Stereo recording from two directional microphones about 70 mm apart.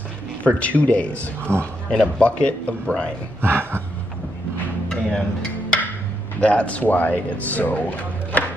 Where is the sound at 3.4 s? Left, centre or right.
Right.